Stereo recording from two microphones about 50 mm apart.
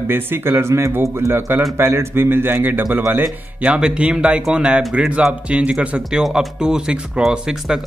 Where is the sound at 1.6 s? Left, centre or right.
Right.